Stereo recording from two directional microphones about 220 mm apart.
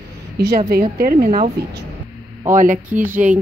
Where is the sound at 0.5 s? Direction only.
45° right (ahead or behind).